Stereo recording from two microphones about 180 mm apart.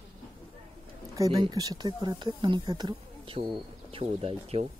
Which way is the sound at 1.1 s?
20° right (ahead or behind).